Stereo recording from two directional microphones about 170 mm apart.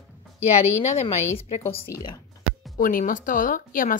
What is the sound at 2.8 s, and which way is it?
Speech, 55° left (ahead or behind).